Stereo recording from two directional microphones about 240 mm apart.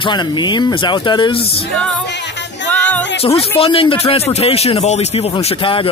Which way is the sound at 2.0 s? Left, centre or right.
Left.